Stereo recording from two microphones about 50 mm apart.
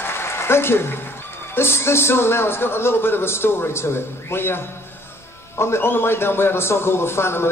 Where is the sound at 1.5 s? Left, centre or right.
Left.